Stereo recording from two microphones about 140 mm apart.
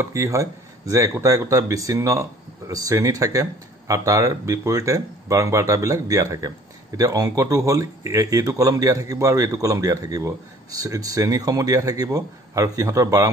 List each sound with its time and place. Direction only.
0.0 s a man's voice: 20° right (ahead or behind)